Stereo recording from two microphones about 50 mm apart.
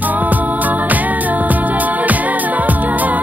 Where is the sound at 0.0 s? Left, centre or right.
Right.